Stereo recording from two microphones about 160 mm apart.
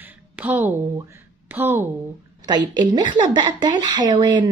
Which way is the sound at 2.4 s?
25° right (ahead or behind).